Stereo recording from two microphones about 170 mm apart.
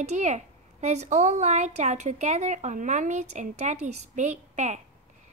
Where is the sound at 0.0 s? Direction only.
45° right (ahead or behind).